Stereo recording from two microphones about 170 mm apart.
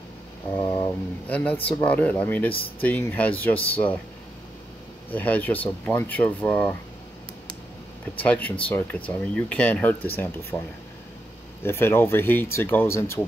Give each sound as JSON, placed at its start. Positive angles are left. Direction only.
{"t": 0.6, "sound": "speech", "side_deg": 20}
{"t": 1.2, "sound": "speech", "side_deg": 10}
{"t": 5.1, "sound": "speech", "side_deg": 10}
{"t": 8.2, "sound": "speech", "side_deg": 10}
{"t": 11.6, "sound": "speech", "side_deg": 15}